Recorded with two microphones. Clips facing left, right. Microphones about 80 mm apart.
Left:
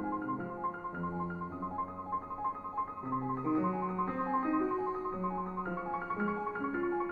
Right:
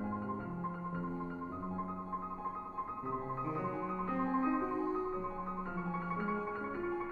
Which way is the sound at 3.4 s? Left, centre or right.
Centre.